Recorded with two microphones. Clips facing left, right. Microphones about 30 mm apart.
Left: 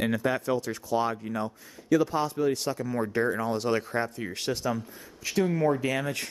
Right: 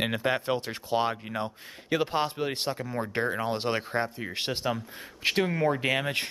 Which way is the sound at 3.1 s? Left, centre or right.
Right.